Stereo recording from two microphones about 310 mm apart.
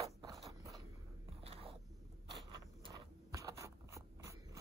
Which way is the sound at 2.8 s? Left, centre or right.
Centre.